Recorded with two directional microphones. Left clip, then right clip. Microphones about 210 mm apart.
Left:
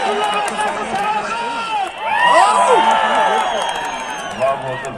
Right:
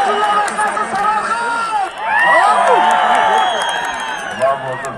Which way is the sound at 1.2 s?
30° left (ahead or behind).